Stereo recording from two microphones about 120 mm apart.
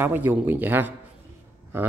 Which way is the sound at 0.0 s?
15° right (ahead or behind).